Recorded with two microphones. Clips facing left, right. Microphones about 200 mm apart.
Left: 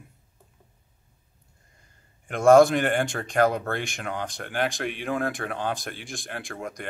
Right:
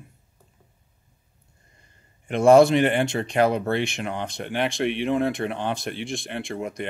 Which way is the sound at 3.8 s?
Centre (ahead or behind).